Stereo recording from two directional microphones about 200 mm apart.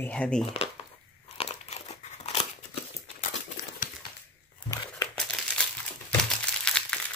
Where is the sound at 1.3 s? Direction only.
30° left (ahead or behind).